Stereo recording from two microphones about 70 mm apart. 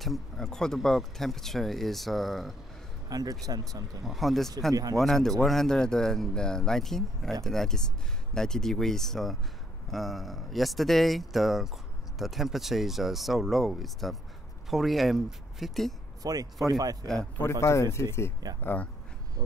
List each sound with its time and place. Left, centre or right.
0.0 s speech: centre
3.1 s speech: right
4.0 s speech: centre
16.2 s speech: right
17.4 s speech: left
18.6 s speech: left